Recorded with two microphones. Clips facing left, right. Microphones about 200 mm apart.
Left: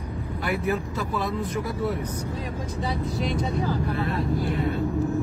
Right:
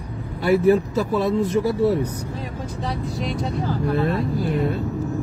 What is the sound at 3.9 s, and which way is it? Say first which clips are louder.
Speech: right 6 dB; 35° right (ahead or behind).